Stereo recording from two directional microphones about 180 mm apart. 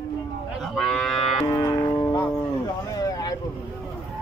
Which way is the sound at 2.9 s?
20° left (ahead or behind).